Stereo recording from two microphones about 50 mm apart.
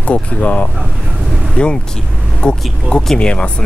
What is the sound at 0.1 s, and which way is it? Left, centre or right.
Speech, left.